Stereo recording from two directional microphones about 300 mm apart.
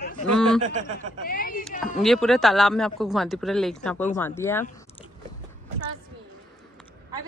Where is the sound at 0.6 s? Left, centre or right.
Right.